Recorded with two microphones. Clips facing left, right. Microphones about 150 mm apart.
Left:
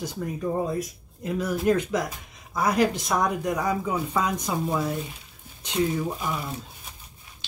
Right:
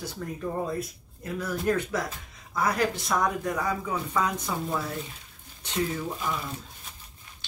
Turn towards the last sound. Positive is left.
turn(degrees=15)  # may be behind; listen again after turning